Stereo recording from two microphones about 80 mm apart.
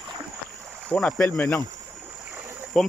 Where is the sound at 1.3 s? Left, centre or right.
Left.